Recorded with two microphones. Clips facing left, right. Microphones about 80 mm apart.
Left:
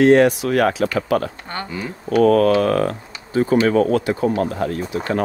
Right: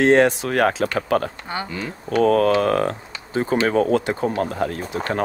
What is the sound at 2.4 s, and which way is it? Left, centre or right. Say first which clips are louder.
Speech: left 2 dB; right.